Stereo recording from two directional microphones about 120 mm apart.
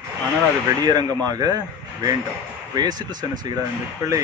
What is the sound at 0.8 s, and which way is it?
Speech, 35° right (ahead or behind).